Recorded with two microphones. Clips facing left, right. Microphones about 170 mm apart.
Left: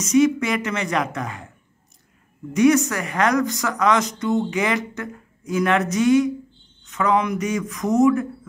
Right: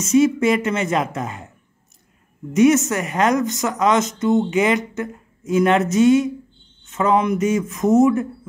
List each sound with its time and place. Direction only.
0.0 s a woman's voice: 25° right (ahead or behind)
2.5 s a woman's voice: 25° right (ahead or behind)